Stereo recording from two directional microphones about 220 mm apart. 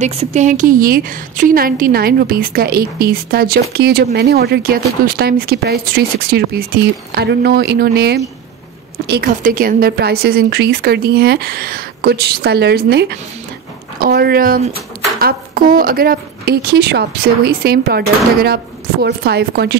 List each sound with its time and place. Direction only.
0.0 s a woman's voice: 30° right (ahead or behind); by 19.7 s 45° right (ahead or behind)